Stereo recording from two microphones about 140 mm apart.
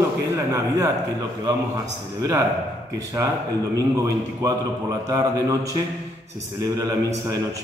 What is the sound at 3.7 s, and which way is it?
A man's voice, 25° right (ahead or behind).